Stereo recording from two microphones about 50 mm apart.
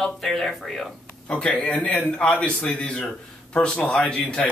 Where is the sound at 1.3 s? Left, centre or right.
Left.